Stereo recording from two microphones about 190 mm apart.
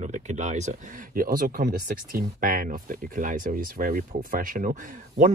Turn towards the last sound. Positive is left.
turn(degrees=-45)  # may be behind; listen again after turning